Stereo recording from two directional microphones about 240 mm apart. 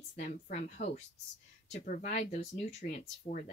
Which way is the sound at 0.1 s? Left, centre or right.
Left.